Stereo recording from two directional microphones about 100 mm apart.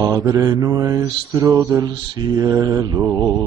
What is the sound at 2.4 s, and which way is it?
Mantra, 40° right (ahead or behind).